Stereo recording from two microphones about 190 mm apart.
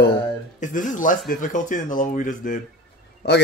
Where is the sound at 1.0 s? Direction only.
40° left (ahead or behind).